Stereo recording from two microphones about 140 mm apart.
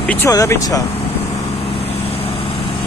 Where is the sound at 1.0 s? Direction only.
45° left (ahead or behind).